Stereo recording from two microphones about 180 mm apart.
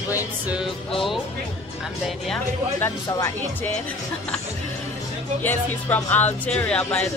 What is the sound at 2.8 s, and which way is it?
Speech, 10° left (ahead or behind).